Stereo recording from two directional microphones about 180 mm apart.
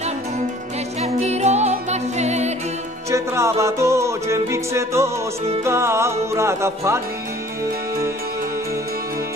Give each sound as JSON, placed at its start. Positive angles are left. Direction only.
{"t": 1.0, "sound": "music", "side_deg": -35}
{"t": 3.1, "sound": "music", "side_deg": -15}
{"t": 5.6, "sound": "speech", "side_deg": -15}